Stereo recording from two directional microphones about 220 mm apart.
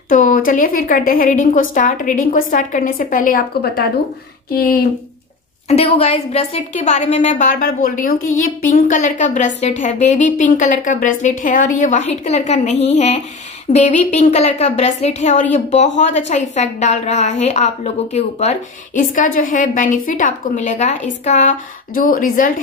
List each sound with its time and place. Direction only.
0.1 s a woman's voice: 35° left (ahead or behind)
5.7 s a woman's voice: 30° left (ahead or behind)